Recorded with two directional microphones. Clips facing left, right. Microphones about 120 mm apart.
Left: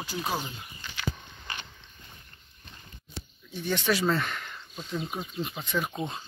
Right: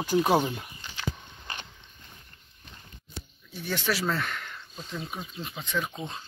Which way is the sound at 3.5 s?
5° right (ahead or behind).